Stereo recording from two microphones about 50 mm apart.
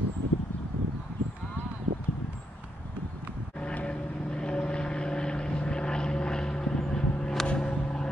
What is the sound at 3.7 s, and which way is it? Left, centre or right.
Vehicle, left.